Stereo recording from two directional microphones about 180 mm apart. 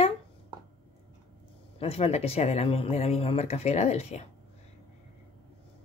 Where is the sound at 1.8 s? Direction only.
35° left (ahead or behind).